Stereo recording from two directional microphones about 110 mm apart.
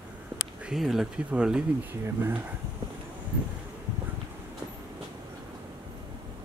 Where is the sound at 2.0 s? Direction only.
25° right (ahead or behind).